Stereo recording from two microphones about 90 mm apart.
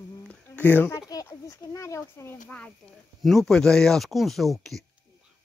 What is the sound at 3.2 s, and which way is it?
Speech, 5° left (ahead or behind).